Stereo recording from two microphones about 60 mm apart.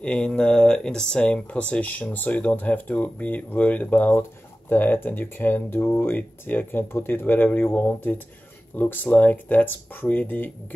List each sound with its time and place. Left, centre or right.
0.0 s speech: centre
4.1 s a sound: left
4.7 s speech: left